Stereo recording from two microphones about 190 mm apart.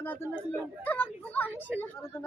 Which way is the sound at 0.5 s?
10° left (ahead or behind).